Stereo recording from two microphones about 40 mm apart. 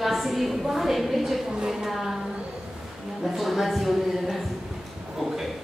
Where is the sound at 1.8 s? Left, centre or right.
Centre.